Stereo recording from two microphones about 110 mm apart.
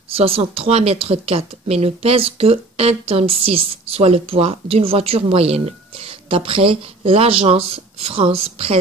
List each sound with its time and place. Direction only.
0.1 s speech: 60° right (ahead or behind)